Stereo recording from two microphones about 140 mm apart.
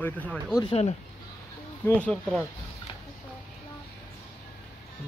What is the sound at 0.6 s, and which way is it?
Speech, 45° left (ahead or behind).